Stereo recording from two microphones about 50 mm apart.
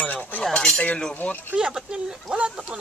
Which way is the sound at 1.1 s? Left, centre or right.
Left.